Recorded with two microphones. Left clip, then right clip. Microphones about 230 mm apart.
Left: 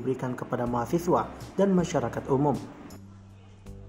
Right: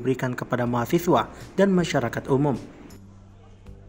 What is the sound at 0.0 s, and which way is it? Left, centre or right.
A man's voice, right.